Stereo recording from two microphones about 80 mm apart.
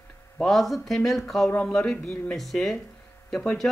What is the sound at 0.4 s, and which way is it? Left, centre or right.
A man's voice, centre.